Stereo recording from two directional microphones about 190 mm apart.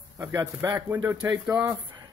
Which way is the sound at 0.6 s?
15° right (ahead or behind).